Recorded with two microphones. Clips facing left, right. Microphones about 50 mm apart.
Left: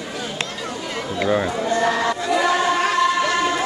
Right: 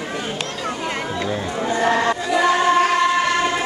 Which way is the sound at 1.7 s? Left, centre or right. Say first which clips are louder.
Right 3 dB; centre.